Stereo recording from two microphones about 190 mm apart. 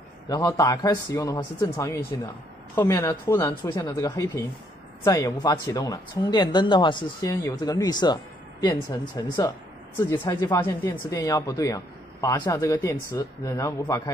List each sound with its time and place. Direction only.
0.3 s speech: 15° left (ahead or behind)
9.9 s speech: 10° left (ahead or behind)